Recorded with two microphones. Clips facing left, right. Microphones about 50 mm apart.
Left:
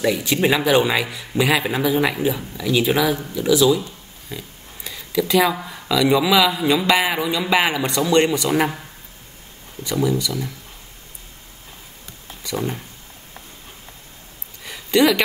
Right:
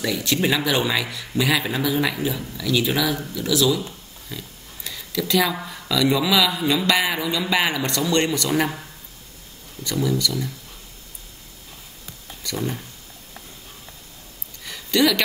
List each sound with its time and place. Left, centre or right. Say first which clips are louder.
0.0 s speech: left 4 dB; centre
9.8 s speech: left 2 dB; centre
12.4 s speech: left 2 dB; centre
14.6 s a sound: left 3 dB; centre